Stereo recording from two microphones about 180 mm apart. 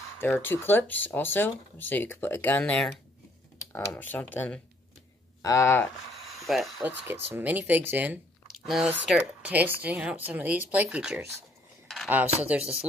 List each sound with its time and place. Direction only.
0.2 s speech: 10° left (ahead or behind)
6.4 s speech: centre (ahead or behind)
12.5 s speech: 5° right (ahead or behind)